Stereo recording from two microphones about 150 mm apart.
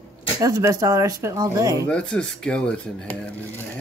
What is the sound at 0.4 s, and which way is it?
Speech, 20° right (ahead or behind).